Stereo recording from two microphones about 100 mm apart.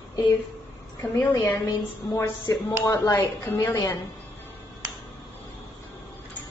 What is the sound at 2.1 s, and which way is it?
A woman's voice, 30° left (ahead or behind).